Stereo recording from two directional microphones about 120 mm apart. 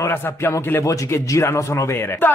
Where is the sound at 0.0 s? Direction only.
20° left (ahead or behind).